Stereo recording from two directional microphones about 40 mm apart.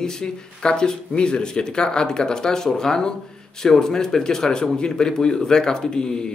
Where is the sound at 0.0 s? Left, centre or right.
Centre.